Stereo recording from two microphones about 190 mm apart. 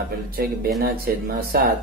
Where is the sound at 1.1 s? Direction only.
50° right (ahead or behind).